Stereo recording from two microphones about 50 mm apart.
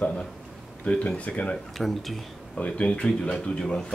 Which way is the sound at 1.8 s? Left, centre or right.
Centre.